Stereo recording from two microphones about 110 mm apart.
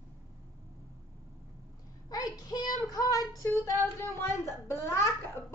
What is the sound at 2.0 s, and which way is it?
Child singing, 35° left (ahead or behind).